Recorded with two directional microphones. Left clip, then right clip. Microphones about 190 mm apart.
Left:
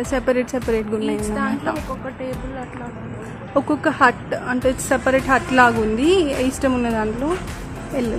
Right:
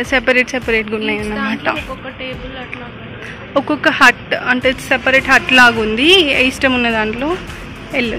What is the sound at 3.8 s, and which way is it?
Speech, centre (ahead or behind).